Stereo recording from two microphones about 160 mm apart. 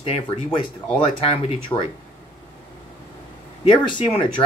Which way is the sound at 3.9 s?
30° left (ahead or behind).